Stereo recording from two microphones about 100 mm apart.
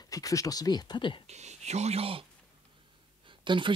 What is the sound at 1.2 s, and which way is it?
Speech, 90° right.